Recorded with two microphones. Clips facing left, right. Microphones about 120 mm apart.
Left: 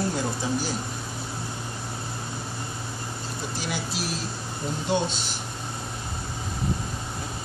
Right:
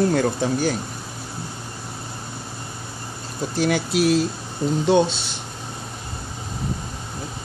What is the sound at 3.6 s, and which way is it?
Speech, 60° right (ahead or behind).